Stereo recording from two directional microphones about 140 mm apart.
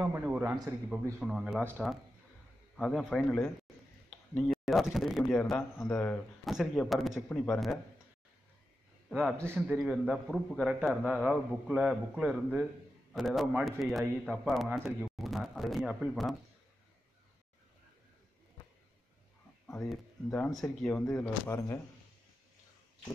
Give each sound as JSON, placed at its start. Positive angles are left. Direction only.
{"t": 0.0, "sound": "a man's voice", "side_deg": -15}
{"t": 9.1, "sound": "a man's voice", "side_deg": -15}
{"t": 9.7, "sound": "speech", "side_deg": -5}
{"t": 19.7, "sound": "speech", "side_deg": 5}
{"t": 21.1, "sound": "speech", "side_deg": 15}